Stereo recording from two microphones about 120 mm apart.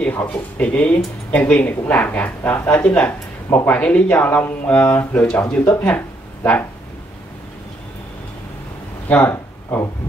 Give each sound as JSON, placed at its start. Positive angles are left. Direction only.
{"t": 0.0, "sound": "speech", "side_deg": 10}
{"t": 9.1, "sound": "speech", "side_deg": 15}